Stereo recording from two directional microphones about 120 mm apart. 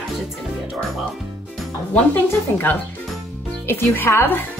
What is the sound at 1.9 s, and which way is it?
A woman's voice, 15° left (ahead or behind).